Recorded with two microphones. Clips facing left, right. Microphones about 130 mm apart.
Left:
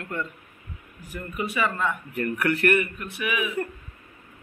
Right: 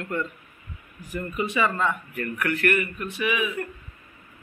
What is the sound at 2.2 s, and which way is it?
Speech, 35° left (ahead or behind).